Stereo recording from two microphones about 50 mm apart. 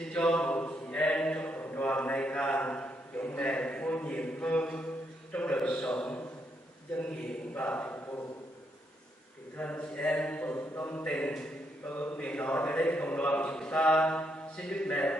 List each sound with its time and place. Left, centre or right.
0.1 s a sound: left
7.0 s a man's voice: left
7.5 s speech: left
9.6 s a man's voice: left